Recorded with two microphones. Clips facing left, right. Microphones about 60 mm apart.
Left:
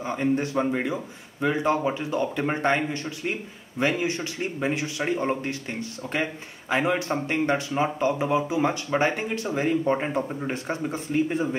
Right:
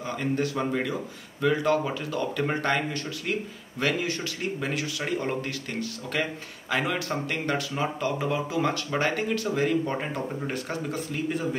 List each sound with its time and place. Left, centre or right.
0.0 s speech: left